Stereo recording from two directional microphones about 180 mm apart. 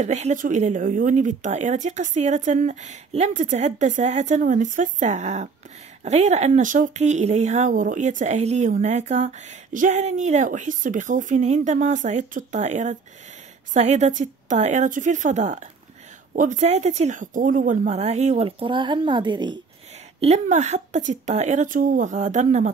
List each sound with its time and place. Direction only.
0.0 s a woman's voice: 40° right (ahead or behind); by 19.6 s 25° right (ahead or behind)
20.2 s speech: 40° right (ahead or behind)